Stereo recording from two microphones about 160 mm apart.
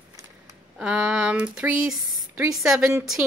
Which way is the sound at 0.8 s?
5° right (ahead or behind).